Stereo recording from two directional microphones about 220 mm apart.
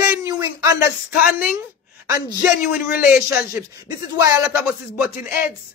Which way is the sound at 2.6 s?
45° left (ahead or behind).